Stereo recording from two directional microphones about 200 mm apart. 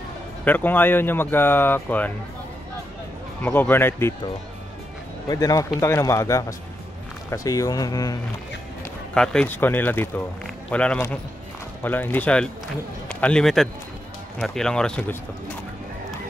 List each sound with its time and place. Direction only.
0.5 s a man's voice: 10° left (ahead or behind)
3.4 s a man's voice: 10° left (ahead or behind)
5.3 s a man's voice: 15° left (ahead or behind)
9.1 s a man's voice: 5° left (ahead or behind)